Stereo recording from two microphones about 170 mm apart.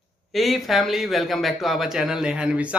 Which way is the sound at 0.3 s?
Centre (ahead or behind).